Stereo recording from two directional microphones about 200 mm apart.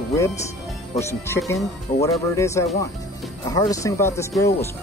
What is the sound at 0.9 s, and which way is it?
Speech, 15° left (ahead or behind).